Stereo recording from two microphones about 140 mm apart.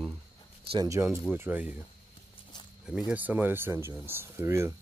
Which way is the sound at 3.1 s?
10° right (ahead or behind).